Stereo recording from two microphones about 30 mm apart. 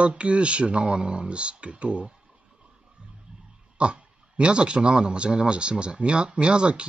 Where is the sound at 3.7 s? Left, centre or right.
Right.